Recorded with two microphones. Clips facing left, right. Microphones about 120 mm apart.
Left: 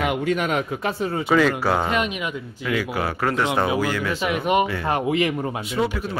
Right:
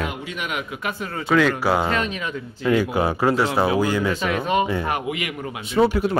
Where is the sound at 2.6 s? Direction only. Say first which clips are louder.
Right 5 dB; 25° right (ahead or behind).